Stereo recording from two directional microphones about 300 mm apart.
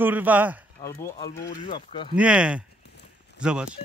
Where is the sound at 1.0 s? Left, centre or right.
Centre.